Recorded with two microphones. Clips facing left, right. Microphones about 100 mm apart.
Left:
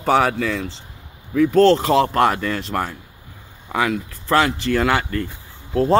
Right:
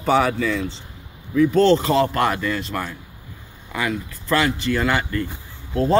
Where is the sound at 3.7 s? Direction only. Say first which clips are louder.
Left 4 dB; 65° left (ahead or behind).